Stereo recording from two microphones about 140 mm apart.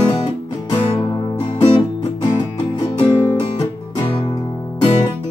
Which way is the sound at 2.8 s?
30° left (ahead or behind).